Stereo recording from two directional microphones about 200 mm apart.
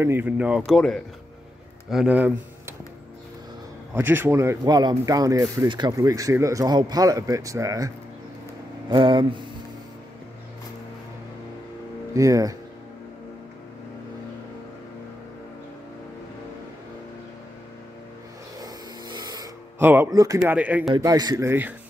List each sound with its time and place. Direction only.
0.0 s speech: 10° right (ahead or behind)
3.9 s speech: 10° right (ahead or behind)
8.9 s speech: 25° right (ahead or behind)
12.1 s speech: 15° right (ahead or behind)
19.1 s a sound: 20° right (ahead or behind)
20.5 s speech: 5° right (ahead or behind)
20.9 s speech: 20° right (ahead or behind)